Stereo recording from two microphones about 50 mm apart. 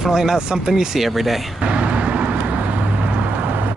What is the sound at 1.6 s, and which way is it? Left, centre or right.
Vehicle, right.